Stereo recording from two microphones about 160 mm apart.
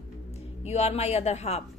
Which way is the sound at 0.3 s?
40° left (ahead or behind).